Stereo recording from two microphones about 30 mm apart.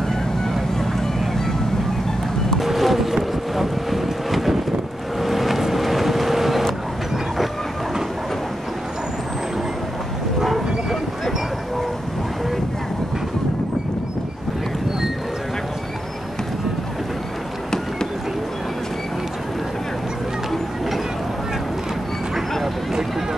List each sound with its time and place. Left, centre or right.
2.6 s boat: centre
5.6 s vehicle: centre
10.4 s train: centre